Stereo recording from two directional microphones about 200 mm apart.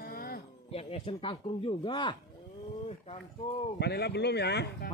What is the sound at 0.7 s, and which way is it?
Speech, 30° left (ahead or behind).